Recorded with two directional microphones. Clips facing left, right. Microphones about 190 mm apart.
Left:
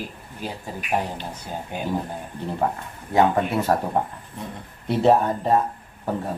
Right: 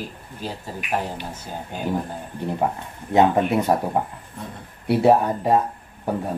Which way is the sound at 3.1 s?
20° right (ahead or behind).